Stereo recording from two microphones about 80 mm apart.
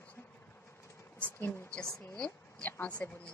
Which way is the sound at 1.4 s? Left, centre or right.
Left.